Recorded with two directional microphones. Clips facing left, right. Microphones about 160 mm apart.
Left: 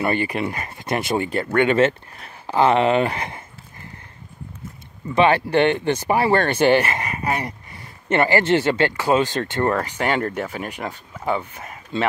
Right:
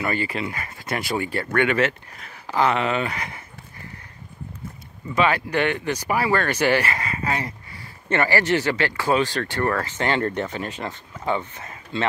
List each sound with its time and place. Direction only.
0.0 s speech: 20° left (ahead or behind)
5.1 s speech: 30° left (ahead or behind); by 12.1 s 10° left (ahead or behind)